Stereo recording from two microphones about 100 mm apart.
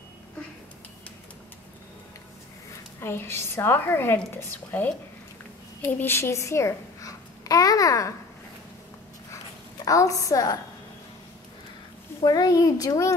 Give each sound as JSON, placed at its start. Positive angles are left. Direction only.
{"t": 3.0, "sound": "a woman's voice", "side_deg": 25}
{"t": 5.9, "sound": "a child's voice", "side_deg": 25}
{"t": 9.8, "sound": "a woman's voice", "side_deg": 35}
{"t": 12.2, "sound": "a woman's voice", "side_deg": 40}